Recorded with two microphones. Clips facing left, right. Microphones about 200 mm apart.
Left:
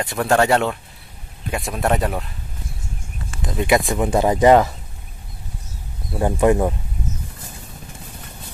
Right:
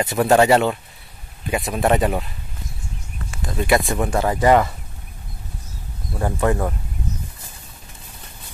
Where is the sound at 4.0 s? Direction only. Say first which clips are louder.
Left 3 dB; 15° left (ahead or behind).